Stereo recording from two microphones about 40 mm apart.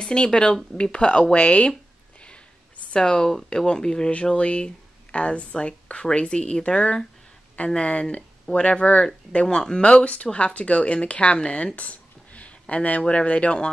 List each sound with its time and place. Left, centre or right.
0.0 s speech: left
2.9 s speech: left
3.2 s speech: centre
4.1 s speech: left
11.5 s a sound: left
13.0 s speech: left